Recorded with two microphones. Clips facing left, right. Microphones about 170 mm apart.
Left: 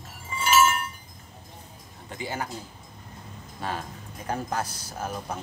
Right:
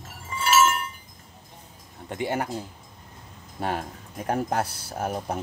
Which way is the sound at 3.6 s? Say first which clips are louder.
Right 4 dB; 65° right (ahead or behind).